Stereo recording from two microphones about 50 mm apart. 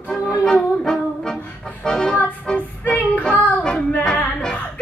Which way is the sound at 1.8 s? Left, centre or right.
Centre.